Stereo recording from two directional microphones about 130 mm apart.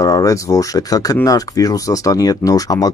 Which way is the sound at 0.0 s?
30° left (ahead or behind).